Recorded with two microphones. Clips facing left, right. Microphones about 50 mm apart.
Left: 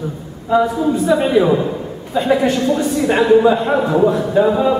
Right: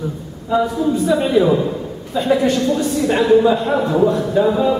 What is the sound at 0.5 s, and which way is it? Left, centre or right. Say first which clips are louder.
A woman's voice: left 2 dB; centre.